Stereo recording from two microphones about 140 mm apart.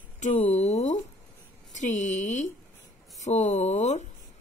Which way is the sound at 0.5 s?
50° left (ahead or behind).